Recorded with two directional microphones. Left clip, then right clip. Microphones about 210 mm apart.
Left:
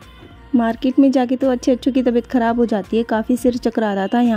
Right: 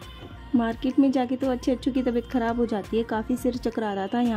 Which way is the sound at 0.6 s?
30° left (ahead or behind).